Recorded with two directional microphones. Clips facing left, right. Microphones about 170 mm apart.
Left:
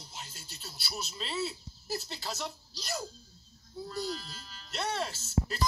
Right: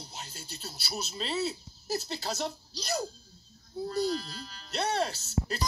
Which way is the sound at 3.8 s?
35° right (ahead or behind).